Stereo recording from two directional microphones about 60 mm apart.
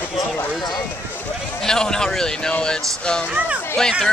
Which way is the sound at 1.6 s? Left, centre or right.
Centre.